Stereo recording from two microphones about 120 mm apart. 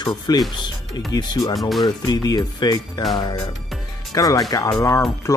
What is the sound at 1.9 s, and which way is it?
Speech, 35° left (ahead or behind).